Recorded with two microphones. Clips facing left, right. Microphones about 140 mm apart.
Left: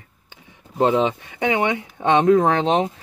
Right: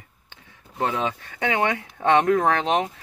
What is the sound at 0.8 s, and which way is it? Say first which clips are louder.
Speech: left 7 dB; 20° left (ahead or behind).